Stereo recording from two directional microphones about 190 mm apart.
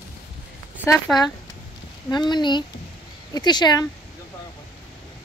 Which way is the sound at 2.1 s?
25° left (ahead or behind).